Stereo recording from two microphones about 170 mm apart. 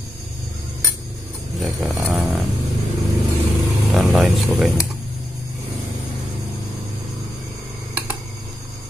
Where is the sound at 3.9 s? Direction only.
Centre (ahead or behind).